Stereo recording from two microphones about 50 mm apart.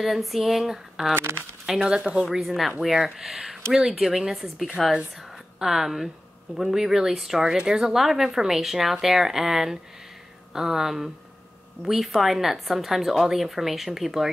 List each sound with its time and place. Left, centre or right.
0.0 s a woman's voice: centre
1.1 s speech: right
1.9 s speech: centre
2.2 s a woman's voice: centre